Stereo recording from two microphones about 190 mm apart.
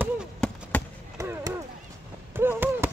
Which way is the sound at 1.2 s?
15° right (ahead or behind).